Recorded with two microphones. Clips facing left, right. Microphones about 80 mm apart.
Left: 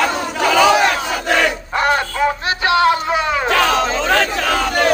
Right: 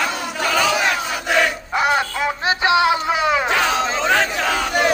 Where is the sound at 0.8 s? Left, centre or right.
Centre.